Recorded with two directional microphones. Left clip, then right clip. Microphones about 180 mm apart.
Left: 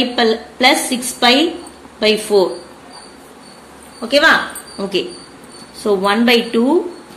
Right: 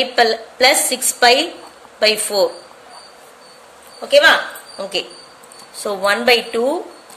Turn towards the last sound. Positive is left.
turn(degrees=-25)  # may be behind; listen again after turning